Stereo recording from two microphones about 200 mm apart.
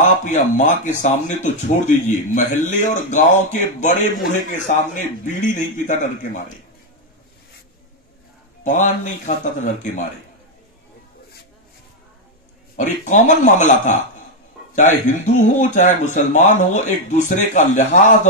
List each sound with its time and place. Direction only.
0.0 s speech: 35° left (ahead or behind)
8.6 s speech: 35° left (ahead or behind)
12.7 s speech: 40° left (ahead or behind)